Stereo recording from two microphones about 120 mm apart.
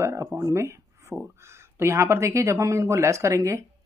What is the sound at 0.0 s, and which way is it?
Speech, 25° right (ahead or behind).